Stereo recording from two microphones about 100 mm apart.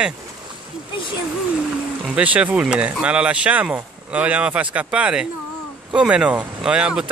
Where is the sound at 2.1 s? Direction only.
15° right (ahead or behind).